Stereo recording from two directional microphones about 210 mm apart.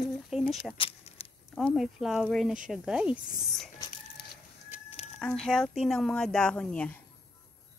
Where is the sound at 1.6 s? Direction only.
Centre (ahead or behind).